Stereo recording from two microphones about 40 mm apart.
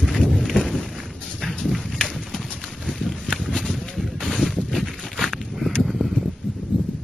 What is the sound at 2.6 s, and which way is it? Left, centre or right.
Clip-clop, centre.